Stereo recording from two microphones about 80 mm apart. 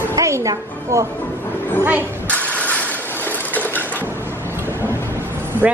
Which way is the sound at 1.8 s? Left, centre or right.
Right.